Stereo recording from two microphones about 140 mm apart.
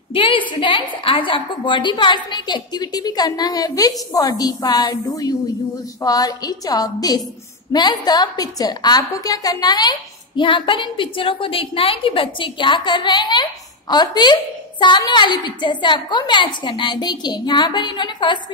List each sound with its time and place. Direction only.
0.1 s a woman's voice: 35° left (ahead or behind)